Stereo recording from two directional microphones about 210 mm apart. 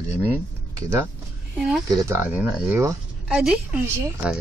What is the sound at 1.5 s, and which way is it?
A woman's voice, 5° right (ahead or behind).